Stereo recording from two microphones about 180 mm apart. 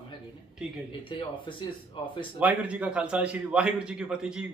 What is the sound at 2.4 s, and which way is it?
A man's voice, 10° right (ahead or behind).